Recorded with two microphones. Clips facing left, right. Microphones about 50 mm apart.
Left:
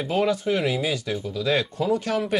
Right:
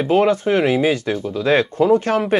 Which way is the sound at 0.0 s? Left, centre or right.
Right.